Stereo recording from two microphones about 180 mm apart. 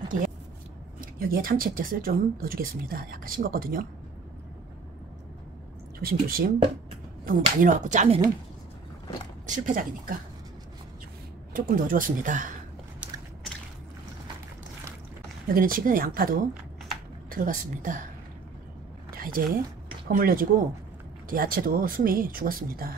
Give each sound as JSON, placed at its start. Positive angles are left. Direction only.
{"t": 1.2, "sound": "speech", "side_deg": -55}
{"t": 5.9, "sound": "speech", "side_deg": -55}
{"t": 7.2, "sound": "speech", "side_deg": -45}
{"t": 9.7, "sound": "speech", "side_deg": -50}
{"t": 11.5, "sound": "speech", "side_deg": -50}
{"t": 15.5, "sound": "speech", "side_deg": -50}
{"t": 19.1, "sound": "speech", "side_deg": -55}